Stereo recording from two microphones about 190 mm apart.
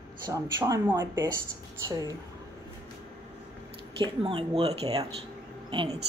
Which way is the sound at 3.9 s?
30° right (ahead or behind).